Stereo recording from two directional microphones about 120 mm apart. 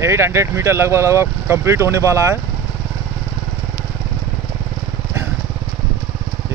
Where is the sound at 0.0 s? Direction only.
25° right (ahead or behind).